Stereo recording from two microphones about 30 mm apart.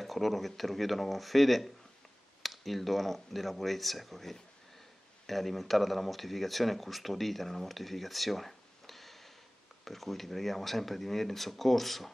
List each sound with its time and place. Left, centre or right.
0.0 s speech: centre